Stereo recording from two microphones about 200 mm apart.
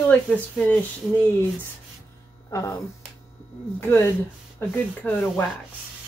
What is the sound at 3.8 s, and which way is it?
Speech, 10° left (ahead or behind).